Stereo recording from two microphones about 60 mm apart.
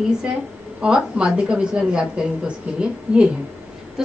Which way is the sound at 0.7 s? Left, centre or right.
Centre.